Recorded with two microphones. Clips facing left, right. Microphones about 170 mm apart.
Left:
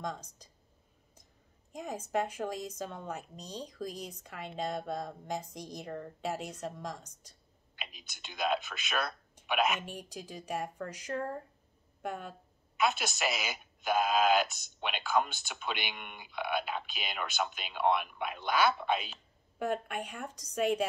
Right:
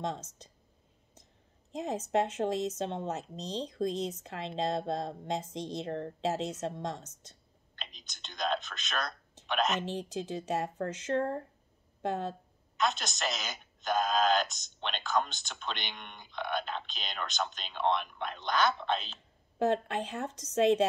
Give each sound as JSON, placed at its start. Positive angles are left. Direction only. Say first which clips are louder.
{"t": 0.0, "sound": "speech", "louder": "right 3 dB", "side_deg": -25}
{"t": 1.7, "sound": "speech", "louder": "right 4 dB", "side_deg": -25}
{"t": 7.7, "sound": "speech", "louder": "left 1 dB", "side_deg": 10}
{"t": 9.8, "sound": "speech", "louder": "right 8 dB", "side_deg": -30}
{"t": 12.7, "sound": "speech", "louder": "left 1 dB", "side_deg": 5}
{"t": 19.6, "sound": "speech", "louder": "right 5 dB", "side_deg": -25}